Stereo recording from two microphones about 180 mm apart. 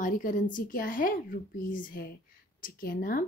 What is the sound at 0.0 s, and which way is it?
Speech, 50° left (ahead or behind).